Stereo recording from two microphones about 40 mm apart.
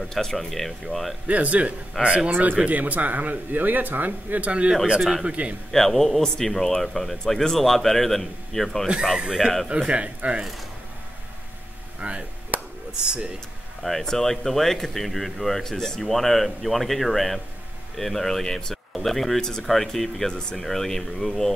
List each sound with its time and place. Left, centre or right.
0.1 s speech: centre
1.2 s a man's voice: right
2.6 s a man's voice: right
5.7 s a man's voice: centre
8.8 s speech: right
9.8 s a man's voice: right
12.0 s speech: right
12.5 s a sound: right
13.0 s speech: right
13.8 s a man's voice: centre